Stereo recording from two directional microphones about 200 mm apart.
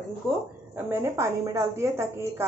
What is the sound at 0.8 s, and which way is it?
A woman's voice, 10° right (ahead or behind).